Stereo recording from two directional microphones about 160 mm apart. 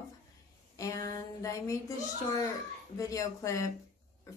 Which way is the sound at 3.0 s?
20° left (ahead or behind).